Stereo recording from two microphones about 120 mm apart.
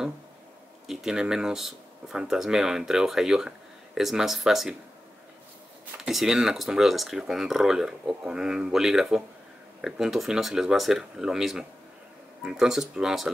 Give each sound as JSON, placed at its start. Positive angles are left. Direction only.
{"t": 0.8, "sound": "speech", "side_deg": -5}
{"t": 5.9, "sound": "speech", "side_deg": -5}